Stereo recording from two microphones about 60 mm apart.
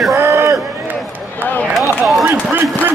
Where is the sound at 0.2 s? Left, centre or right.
Right.